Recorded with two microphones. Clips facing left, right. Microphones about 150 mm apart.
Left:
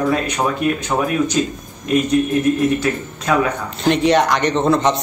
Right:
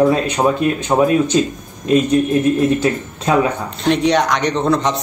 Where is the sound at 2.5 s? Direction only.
25° right (ahead or behind).